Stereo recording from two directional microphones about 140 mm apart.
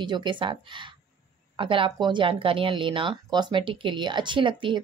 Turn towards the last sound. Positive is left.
turn(degrees=-35)  # may be behind; listen again after turning